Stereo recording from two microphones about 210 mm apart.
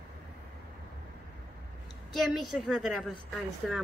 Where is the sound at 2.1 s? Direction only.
Centre (ahead or behind).